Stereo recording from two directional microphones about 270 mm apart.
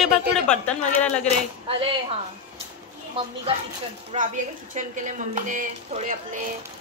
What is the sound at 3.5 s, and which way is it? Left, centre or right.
Speech, right.